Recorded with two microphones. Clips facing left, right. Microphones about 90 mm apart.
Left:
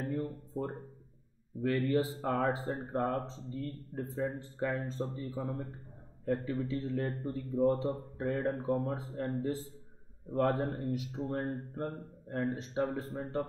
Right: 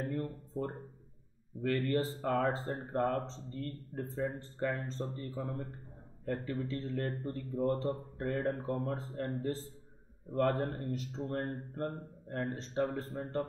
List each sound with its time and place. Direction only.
0.1 s a sound: 10° left (ahead or behind)
1.6 s a man's voice: 10° left (ahead or behind)
13.2 s speech: centre (ahead or behind)